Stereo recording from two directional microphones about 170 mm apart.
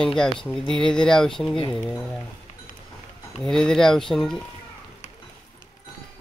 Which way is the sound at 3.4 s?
5° left (ahead or behind).